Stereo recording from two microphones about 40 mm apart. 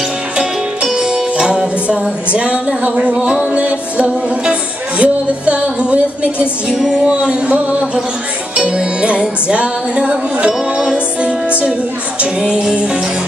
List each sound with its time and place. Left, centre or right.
0.4 s music: centre